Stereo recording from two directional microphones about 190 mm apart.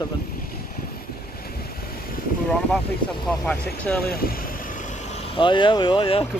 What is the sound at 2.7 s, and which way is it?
Speech, 5° left (ahead or behind).